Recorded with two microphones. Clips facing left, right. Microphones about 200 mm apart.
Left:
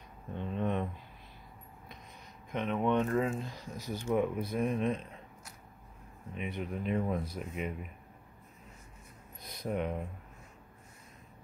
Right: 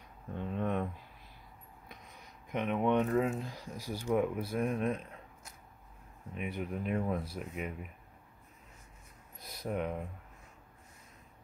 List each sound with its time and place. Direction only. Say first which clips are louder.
0.4 s a sound: left 1 dB; 5° right (ahead or behind)
2.5 s speech: even; 15° right (ahead or behind)
6.3 s speech: even; 5° right (ahead or behind)
9.4 s speech: left 1 dB; 5° right (ahead or behind)